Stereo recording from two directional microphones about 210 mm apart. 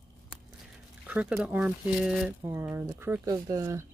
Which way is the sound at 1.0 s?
5° right (ahead or behind).